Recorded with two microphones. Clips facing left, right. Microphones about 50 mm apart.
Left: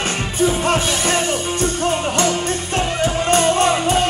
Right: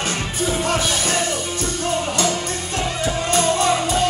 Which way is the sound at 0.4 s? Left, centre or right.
Left.